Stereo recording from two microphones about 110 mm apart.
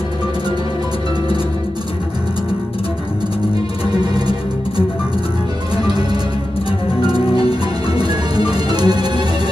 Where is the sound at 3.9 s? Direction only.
40° right (ahead or behind).